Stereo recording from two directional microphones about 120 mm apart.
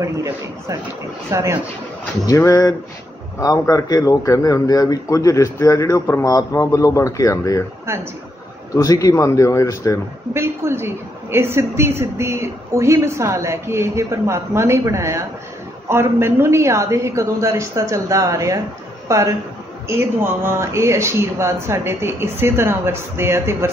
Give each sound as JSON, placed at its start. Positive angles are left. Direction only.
{"t": 0.0, "sound": "a woman's voice", "side_deg": -25}
{"t": 2.2, "sound": "a man's voice", "side_deg": 30}
{"t": 7.8, "sound": "speech", "side_deg": -20}
{"t": 8.7, "sound": "a man's voice", "side_deg": 30}
{"t": 10.3, "sound": "a woman's voice", "side_deg": -20}